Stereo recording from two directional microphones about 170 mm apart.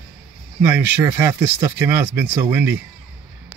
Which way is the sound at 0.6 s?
10° right (ahead or behind).